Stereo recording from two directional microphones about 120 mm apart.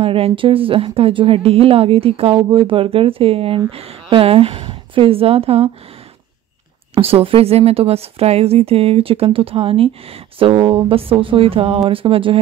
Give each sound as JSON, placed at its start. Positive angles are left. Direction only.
{"t": 0.0, "sound": "speech", "side_deg": -50}
{"t": 7.0, "sound": "a woman's voice", "side_deg": -55}